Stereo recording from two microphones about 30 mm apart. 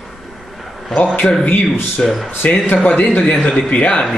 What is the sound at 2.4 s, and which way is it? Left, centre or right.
Speech, left.